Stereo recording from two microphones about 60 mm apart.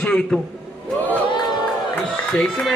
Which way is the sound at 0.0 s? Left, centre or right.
Centre.